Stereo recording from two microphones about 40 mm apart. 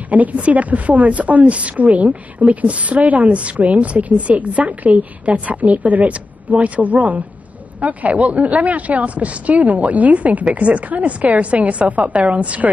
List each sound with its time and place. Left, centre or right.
0.1 s a woman's voice: right